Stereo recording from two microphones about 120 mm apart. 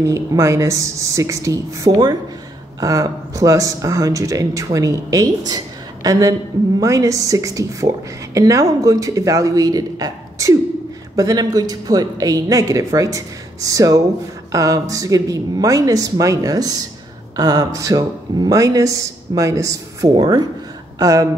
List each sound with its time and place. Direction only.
0.0 s speech: 25° right (ahead or behind)